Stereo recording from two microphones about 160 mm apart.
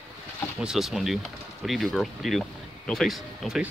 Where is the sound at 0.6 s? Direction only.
5° right (ahead or behind).